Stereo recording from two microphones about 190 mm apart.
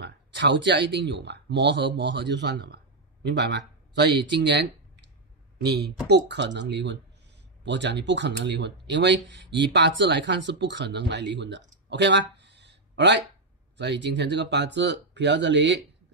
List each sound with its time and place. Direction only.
0.0 s speech: 70° right (ahead or behind)